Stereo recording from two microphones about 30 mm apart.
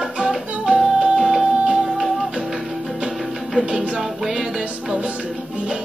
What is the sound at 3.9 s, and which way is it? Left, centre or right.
Music, centre.